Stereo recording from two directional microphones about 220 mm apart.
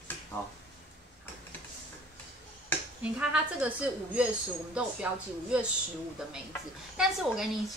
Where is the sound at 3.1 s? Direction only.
5° right (ahead or behind).